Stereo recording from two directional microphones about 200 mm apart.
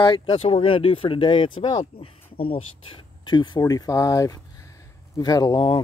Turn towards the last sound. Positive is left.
turn(degrees=25)  # may be behind; listen again after turning